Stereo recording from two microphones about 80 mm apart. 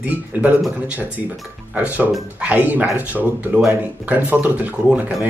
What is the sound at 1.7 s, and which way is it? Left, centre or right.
Speech, centre.